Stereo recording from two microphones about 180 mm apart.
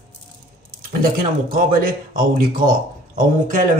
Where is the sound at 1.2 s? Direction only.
50° right (ahead or behind).